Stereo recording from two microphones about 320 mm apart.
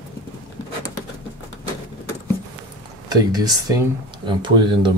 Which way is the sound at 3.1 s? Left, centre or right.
Centre.